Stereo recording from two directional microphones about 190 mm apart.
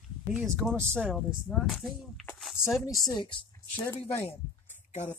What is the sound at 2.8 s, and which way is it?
Speech, 20° left (ahead or behind).